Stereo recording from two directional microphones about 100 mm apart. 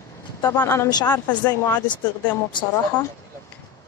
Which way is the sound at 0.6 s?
25° left (ahead or behind).